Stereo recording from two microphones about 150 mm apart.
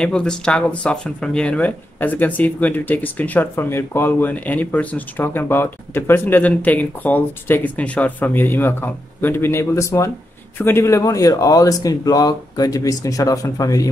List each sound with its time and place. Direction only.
0.0 s speech: 5° left (ahead or behind); by 13.8 s 20° left (ahead or behind)